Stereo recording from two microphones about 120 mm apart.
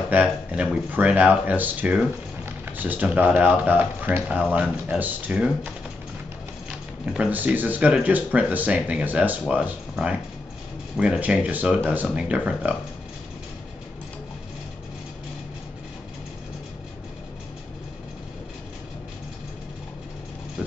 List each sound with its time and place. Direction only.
0.1 s speech: 10° right (ahead or behind)
7.2 s speech: 15° right (ahead or behind)
20.6 s a sound: 5° right (ahead or behind)